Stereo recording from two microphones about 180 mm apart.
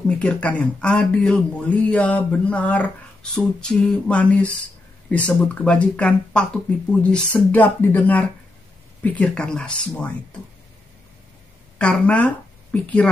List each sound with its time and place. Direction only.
0.0 s speech: 5° left (ahead or behind)
11.8 s speech: 5° left (ahead or behind)